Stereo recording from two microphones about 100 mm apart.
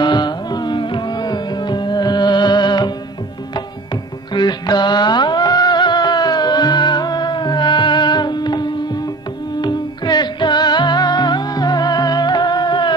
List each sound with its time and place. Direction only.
0.0 s music: 45° left (ahead or behind)